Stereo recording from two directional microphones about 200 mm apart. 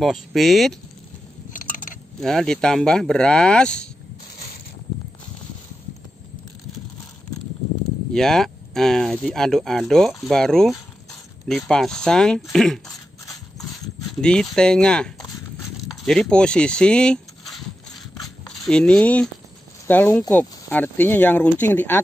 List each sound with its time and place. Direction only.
0.0 s speech: centre (ahead or behind)
1.5 s a sound: 40° left (ahead or behind)
2.1 s speech: centre (ahead or behind)
8.1 s speech: centre (ahead or behind)
14.2 s speech: 5° left (ahead or behind)
18.2 s a sound: 5° left (ahead or behind)
19.9 s speech: 10° left (ahead or behind)